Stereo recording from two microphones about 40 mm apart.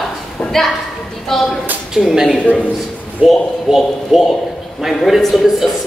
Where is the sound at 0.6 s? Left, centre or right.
Centre.